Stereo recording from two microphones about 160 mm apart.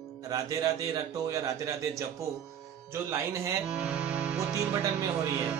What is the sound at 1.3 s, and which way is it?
Speech, 20° right (ahead or behind).